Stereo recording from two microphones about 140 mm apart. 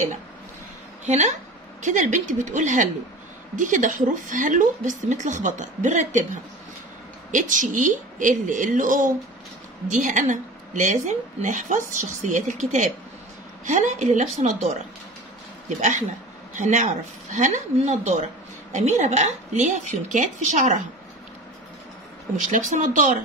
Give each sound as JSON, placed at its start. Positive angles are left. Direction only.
{"t": 1.0, "sound": "speech", "side_deg": -55}
{"t": 7.2, "sound": "a woman's voice", "side_deg": -65}
{"t": 16.5, "sound": "speech", "side_deg": -60}
{"t": 22.4, "sound": "speech", "side_deg": -65}